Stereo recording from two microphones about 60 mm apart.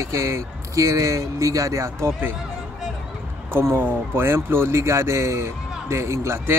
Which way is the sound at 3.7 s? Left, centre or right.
Right.